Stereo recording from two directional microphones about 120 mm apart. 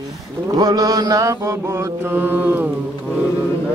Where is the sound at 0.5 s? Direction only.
30° right (ahead or behind); by 2.7 s 15° right (ahead or behind).